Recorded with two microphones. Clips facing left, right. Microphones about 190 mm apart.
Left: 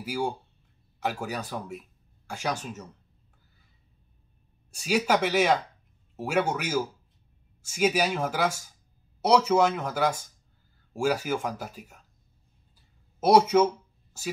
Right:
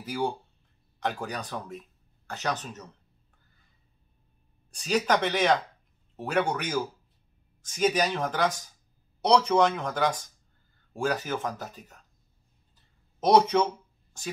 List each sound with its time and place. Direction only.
0.0 s speech: 10° left (ahead or behind)
4.6 s speech: 10° left (ahead or behind)
12.7 s a sound: 10° left (ahead or behind)
14.2 s speech: 5° left (ahead or behind)